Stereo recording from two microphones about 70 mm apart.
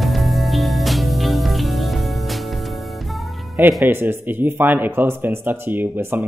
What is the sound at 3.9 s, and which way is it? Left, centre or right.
Speech, right.